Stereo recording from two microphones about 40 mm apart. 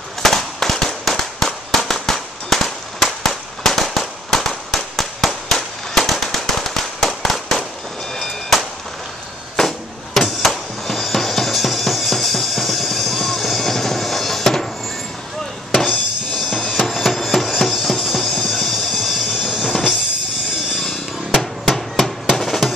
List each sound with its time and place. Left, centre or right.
0.2 s firecracker: centre
8.1 s vehicle: centre
9.6 s music: centre
16.3 s music: centre
16.6 s music: centre
18.2 s music: centre
18.5 s train: centre
18.9 s music: centre
21.4 s a sound: centre
22.4 s music: centre